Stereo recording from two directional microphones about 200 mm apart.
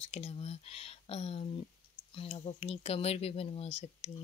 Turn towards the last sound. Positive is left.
turn(degrees=30)  # may be behind; listen again after turning